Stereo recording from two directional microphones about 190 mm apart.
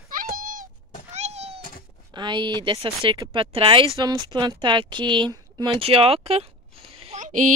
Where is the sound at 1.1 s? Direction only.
35° right (ahead or behind).